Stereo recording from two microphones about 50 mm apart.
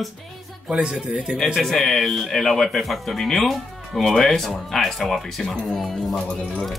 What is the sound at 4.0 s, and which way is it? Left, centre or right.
Speech, centre.